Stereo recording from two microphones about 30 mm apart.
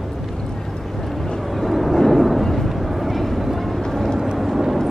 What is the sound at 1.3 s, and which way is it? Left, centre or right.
Vehicle, centre.